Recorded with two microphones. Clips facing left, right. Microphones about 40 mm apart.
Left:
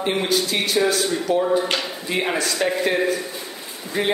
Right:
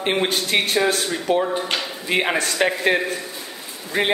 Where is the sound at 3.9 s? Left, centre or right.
Right.